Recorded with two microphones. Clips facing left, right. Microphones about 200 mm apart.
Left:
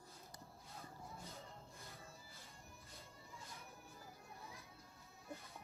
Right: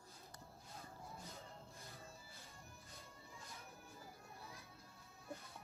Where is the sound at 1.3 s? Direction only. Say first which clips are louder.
Even; centre (ahead or behind).